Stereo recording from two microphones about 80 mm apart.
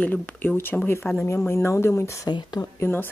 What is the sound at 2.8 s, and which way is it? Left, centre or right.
Speech, left.